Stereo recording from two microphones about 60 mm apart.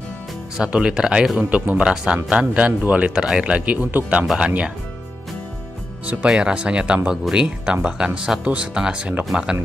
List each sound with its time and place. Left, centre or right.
0.7 s speech: centre
1.5 s speech: right
6.0 s speech: centre